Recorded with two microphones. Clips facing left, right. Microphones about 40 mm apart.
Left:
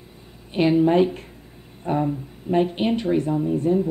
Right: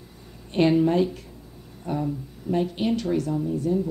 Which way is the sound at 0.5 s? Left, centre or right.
Centre.